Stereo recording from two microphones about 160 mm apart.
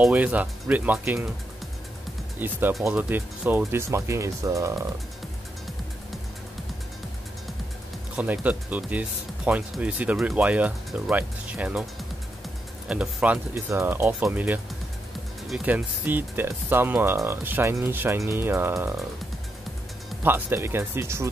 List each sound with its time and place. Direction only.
0.0 s speech: 10° right (ahead or behind)
2.4 s speech: 10° right (ahead or behind)
8.2 s speech: 10° right (ahead or behind)
12.8 s speech: 5° right (ahead or behind)
20.2 s speech: 15° right (ahead or behind)